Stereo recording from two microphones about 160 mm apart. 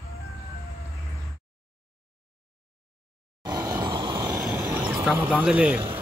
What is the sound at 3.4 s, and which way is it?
Vehicle, 25° right (ahead or behind).